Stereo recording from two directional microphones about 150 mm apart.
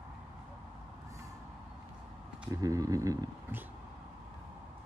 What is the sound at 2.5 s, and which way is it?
Speech, 20° right (ahead or behind).